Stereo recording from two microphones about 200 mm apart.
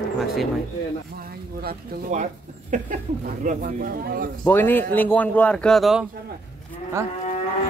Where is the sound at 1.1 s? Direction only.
50° right (ahead or behind).